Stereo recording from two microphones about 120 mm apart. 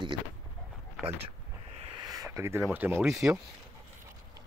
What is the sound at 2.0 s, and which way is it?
Speech, 30° right (ahead or behind).